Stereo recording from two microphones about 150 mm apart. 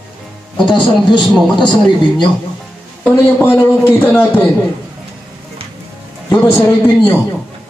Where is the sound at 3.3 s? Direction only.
15° left (ahead or behind).